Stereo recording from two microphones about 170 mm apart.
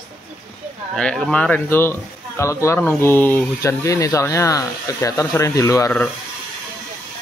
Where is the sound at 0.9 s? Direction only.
5° left (ahead or behind).